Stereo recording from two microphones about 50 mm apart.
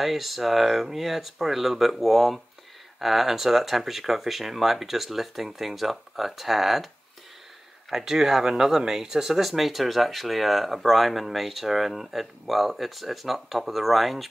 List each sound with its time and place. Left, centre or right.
0.0 s speech: centre
7.9 s speech: centre